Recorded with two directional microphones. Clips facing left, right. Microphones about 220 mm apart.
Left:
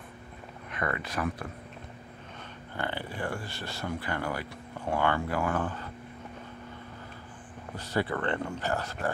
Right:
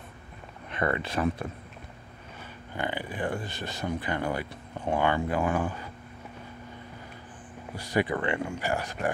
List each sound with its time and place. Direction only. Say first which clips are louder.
0.7 s speech: right 5 dB; 25° right (ahead or behind)
2.7 s speech: right 2 dB; 15° right (ahead or behind)
7.7 s speech: right 3 dB; 15° right (ahead or behind)